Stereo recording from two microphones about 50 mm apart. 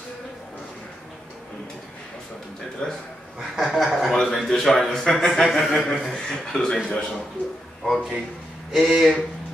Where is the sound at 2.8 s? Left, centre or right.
Centre.